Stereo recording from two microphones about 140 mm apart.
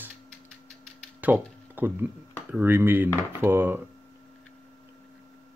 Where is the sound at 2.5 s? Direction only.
15° right (ahead or behind).